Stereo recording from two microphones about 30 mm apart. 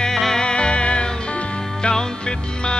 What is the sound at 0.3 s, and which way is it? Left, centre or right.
Music, left.